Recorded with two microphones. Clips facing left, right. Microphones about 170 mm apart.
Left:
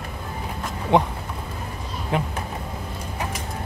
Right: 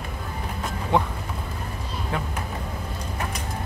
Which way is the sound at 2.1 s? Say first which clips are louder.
Left 5 dB; 20° left (ahead or behind).